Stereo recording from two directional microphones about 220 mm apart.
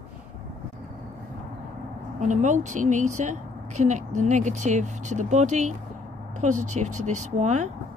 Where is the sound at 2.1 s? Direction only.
35° right (ahead or behind).